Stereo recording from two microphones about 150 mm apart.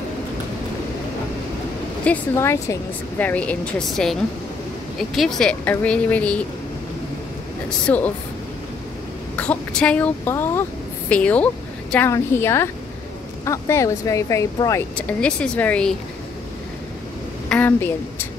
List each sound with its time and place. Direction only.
2.0 s speech: 15° left (ahead or behind)
7.8 s speech: 10° left (ahead or behind)
9.4 s speech: 5° left (ahead or behind)
15.0 s speech: 5° left (ahead or behind)
17.5 s a woman's voice: 10° left (ahead or behind)